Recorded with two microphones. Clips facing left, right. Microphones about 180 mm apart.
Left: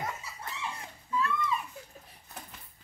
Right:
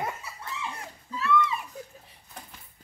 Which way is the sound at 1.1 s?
75° right (ahead or behind).